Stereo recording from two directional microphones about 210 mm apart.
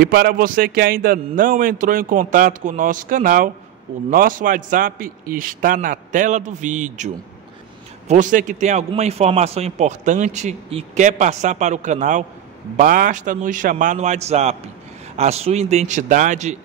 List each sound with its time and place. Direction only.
0.0 s a man's voice: 45° right (ahead or behind)
8.1 s a man's voice: 40° right (ahead or behind)